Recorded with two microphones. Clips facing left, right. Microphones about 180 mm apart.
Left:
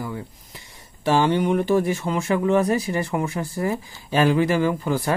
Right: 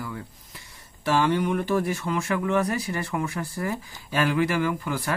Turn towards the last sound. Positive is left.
turn(degrees=30)  # may be behind; listen again after turning